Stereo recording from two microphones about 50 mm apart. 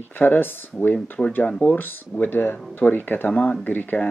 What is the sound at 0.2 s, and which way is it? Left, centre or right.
Speech, left.